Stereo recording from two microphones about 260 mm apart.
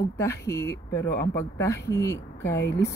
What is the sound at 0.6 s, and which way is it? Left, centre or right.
Speech, left.